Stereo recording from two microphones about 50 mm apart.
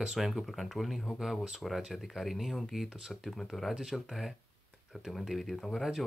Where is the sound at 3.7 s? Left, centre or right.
Centre.